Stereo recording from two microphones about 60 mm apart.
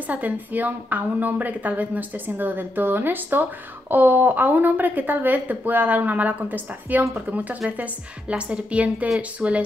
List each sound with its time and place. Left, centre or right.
0.0 s a woman's voice: right